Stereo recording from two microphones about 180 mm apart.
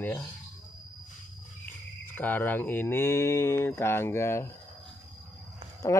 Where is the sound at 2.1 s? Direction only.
10° left (ahead or behind).